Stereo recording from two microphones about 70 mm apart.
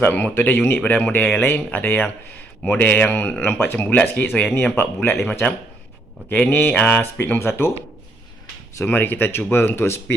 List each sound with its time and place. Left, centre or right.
0.0 s speech: left
6.3 s speech: left
7.3 s speech: left
8.8 s speech: left